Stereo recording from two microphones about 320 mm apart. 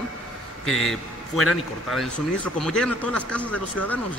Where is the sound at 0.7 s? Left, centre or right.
Centre.